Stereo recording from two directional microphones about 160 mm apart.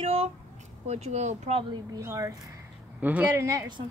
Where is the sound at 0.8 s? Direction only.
45° right (ahead or behind).